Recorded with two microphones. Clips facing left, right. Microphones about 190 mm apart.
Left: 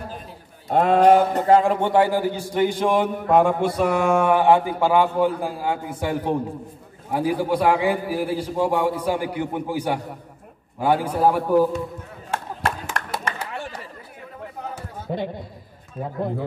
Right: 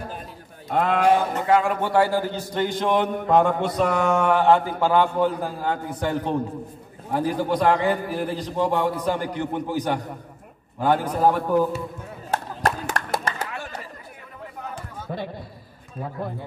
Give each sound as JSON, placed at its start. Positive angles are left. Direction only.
{"t": 0.7, "sound": "speech", "side_deg": 30}
{"t": 1.9, "sound": "a man's voice", "side_deg": 15}
{"t": 12.3, "sound": "music", "side_deg": -35}
{"t": 15.1, "sound": "a man's voice", "side_deg": 20}